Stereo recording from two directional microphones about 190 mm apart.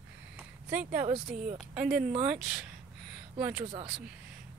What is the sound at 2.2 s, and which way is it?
Speech, 5° right (ahead or behind).